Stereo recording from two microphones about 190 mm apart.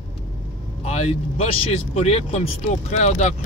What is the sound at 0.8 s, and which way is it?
Speech, 35° left (ahead or behind).